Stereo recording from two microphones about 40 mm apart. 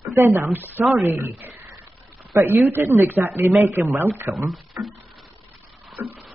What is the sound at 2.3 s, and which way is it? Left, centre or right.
Speech, right.